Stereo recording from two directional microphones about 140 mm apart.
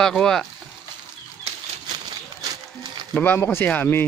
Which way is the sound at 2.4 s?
30° right (ahead or behind).